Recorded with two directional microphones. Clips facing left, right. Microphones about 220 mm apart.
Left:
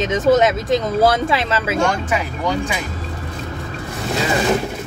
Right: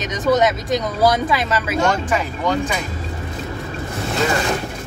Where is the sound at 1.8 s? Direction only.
10° left (ahead or behind).